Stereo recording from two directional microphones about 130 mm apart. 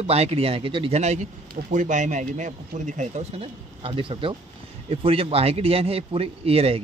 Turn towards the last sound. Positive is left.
turn(degrees=-50)  # may be behind; listen again after turning